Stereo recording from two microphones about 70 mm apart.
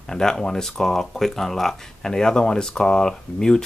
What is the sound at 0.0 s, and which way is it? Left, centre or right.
Speech, centre.